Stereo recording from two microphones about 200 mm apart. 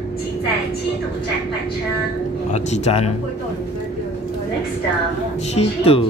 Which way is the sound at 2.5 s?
35° left (ahead or behind).